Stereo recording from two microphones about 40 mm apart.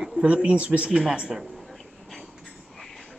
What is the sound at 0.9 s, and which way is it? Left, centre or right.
Speech, centre.